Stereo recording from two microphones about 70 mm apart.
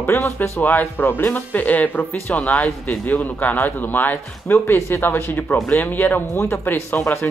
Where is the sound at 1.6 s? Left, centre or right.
Left.